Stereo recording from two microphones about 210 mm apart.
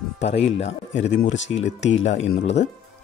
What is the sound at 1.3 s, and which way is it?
Speech, 60° left (ahead or behind).